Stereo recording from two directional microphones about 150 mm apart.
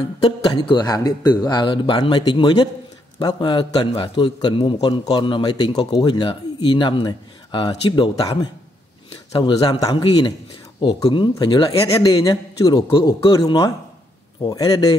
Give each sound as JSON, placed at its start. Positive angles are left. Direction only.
{"t": 0.2, "sound": "a man's voice", "side_deg": 30}